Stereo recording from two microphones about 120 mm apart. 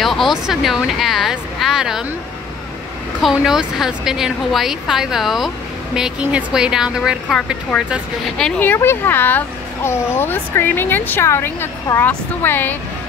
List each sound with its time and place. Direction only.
0.0 s a woman's voice: centre (ahead or behind)
3.2 s a woman's voice: 5° right (ahead or behind)
8.4 s a woman's voice: 5° left (ahead or behind)
8.6 s speech: 20° left (ahead or behind)